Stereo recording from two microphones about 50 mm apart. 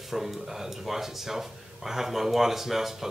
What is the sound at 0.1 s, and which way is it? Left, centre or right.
Speech, centre.